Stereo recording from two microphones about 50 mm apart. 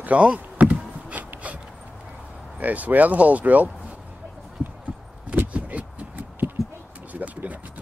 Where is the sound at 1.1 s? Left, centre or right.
Right.